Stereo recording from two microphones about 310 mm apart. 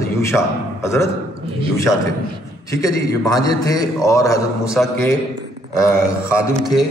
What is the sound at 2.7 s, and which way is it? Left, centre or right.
A man's voice, centre.